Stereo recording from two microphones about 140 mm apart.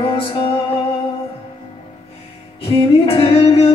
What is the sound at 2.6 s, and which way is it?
Music, 45° left (ahead or behind).